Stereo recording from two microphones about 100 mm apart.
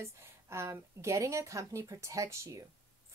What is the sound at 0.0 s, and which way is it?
A woman's voice, 30° right (ahead or behind).